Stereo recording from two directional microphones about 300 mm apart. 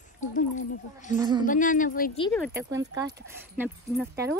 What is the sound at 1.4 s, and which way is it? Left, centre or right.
Speech, left.